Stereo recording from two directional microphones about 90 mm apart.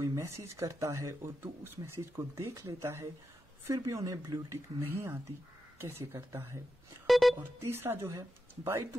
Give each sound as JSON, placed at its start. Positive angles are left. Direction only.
{"t": 0.0, "sound": "speech", "side_deg": -35}
{"t": 7.1, "sound": "music", "side_deg": 0}
{"t": 7.3, "sound": "speech", "side_deg": -25}